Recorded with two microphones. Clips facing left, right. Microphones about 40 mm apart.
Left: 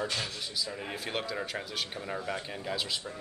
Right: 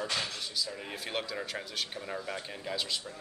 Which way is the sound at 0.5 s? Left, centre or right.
Centre.